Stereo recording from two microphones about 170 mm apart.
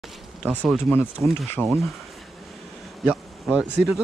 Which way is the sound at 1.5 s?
10° left (ahead or behind).